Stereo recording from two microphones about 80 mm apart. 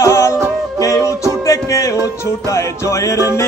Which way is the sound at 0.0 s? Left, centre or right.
Left.